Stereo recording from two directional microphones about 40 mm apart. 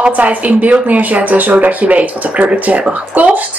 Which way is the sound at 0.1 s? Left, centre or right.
Right.